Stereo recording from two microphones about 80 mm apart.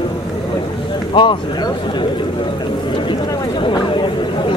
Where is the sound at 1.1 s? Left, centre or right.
Left.